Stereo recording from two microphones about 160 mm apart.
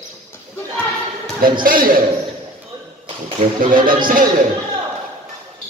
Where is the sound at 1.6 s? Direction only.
60° right (ahead or behind).